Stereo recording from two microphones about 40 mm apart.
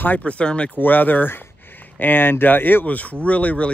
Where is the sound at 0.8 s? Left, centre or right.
Left.